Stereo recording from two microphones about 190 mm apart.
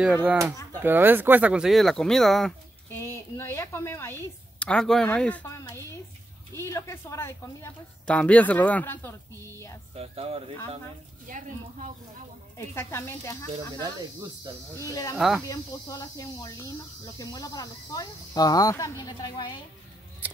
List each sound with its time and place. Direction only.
0.0 s speech: 5° right (ahead or behind)
2.9 s a woman's voice: 10° left (ahead or behind)
9.9 s speech: 30° right (ahead or behind)
11.2 s speech: 45° right (ahead or behind)
12.5 s speech: 15° left (ahead or behind)
14.7 s speech: 15° left (ahead or behind)
15.1 s speech: centre (ahead or behind)
15.4 s speech: 20° left (ahead or behind)